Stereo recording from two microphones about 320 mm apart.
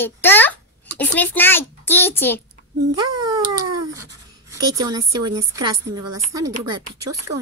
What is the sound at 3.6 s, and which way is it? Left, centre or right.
Cat, right.